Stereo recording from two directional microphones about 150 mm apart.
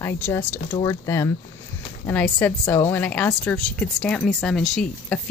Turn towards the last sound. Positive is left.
turn(degrees=5)  # may be behind; listen again after turning